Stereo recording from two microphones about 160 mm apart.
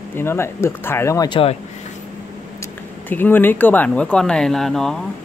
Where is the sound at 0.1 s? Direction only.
15° left (ahead or behind).